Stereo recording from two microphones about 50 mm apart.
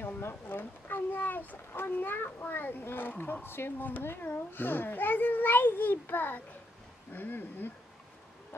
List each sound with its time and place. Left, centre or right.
0.2 s a child's voice: left